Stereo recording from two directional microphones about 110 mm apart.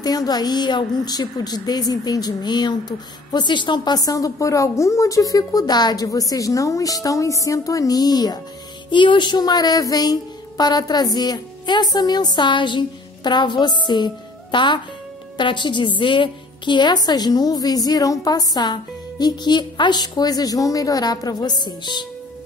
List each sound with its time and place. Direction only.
0.0 s a woman's voice: 35° left (ahead or behind)